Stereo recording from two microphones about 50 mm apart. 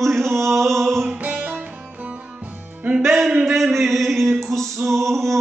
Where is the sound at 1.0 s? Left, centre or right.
Right.